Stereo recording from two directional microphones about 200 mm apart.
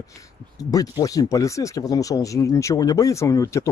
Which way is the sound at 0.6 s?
20° left (ahead or behind).